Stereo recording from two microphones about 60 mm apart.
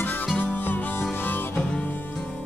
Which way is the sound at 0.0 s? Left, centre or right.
Left.